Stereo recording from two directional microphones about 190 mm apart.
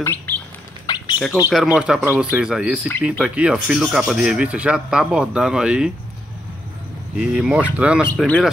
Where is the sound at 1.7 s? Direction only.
5° right (ahead or behind).